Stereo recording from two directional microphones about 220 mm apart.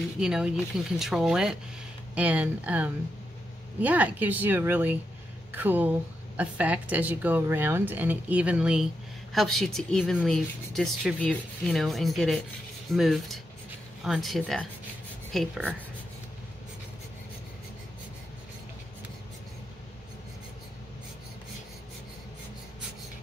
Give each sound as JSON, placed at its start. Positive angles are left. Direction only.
{"t": 0.2, "sound": "a woman's voice", "side_deg": -5}